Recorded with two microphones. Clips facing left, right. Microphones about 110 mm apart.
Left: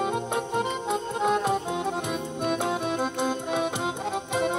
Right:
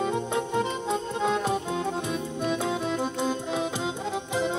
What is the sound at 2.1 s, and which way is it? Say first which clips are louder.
Music: even; 55° left (ahead or behind).